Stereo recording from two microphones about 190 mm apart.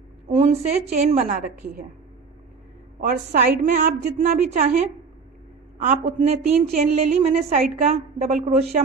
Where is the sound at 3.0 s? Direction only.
55° right (ahead or behind).